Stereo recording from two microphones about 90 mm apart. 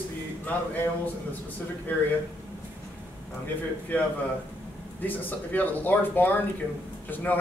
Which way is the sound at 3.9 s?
20° left (ahead or behind).